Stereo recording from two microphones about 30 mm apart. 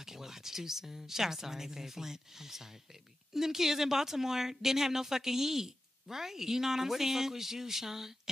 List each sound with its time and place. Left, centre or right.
0.0 s a woman's voice: centre